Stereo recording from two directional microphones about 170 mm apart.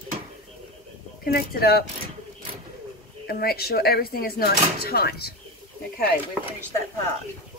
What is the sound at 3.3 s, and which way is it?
Speech, 65° left (ahead or behind).